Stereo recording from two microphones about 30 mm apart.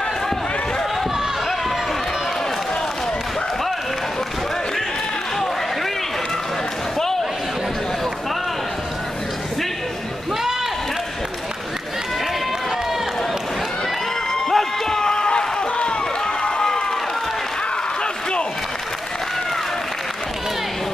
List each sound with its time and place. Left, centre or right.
14.5 s run: centre; by 15.9 s left